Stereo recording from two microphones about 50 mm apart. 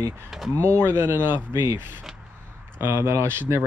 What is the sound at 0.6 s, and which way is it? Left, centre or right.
Speech, right.